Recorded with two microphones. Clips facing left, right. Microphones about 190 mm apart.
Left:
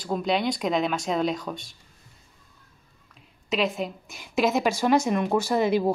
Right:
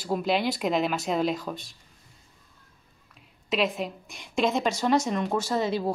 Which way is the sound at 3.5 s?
Centre (ahead or behind).